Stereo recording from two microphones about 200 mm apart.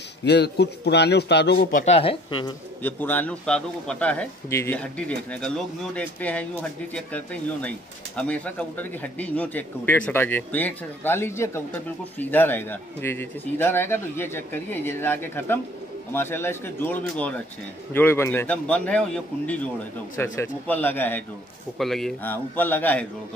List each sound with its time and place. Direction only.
0.2 s a man's voice: 55° left (ahead or behind)
2.0 s speech: 25° left (ahead or behind)
2.8 s a man's voice: 10° left (ahead or behind)